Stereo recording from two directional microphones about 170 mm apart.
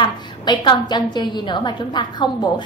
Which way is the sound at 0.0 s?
25° left (ahead or behind).